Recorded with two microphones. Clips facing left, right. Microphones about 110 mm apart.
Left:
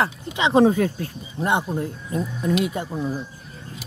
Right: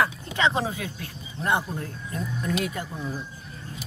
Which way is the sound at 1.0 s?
25° left (ahead or behind).